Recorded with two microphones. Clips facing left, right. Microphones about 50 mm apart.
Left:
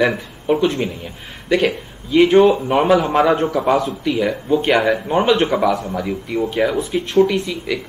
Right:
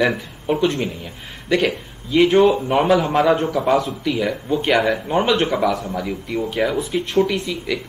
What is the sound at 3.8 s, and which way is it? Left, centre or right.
Speech, centre.